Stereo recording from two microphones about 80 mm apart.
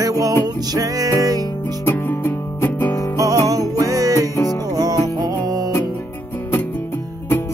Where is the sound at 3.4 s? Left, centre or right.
Right.